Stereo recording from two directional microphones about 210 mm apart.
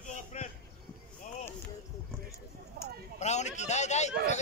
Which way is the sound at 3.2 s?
35° left (ahead or behind).